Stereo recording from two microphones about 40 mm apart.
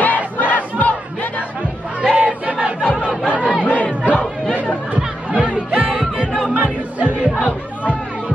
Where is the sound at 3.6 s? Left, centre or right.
Left.